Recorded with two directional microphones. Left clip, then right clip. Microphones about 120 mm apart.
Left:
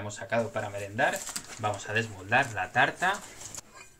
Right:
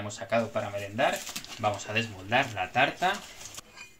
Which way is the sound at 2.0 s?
40° right (ahead or behind).